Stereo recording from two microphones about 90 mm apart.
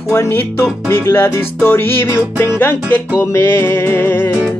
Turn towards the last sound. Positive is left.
turn(degrees=25)  # may be behind; listen again after turning